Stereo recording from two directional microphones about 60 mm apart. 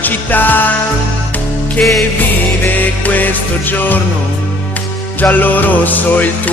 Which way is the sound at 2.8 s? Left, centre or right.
Left.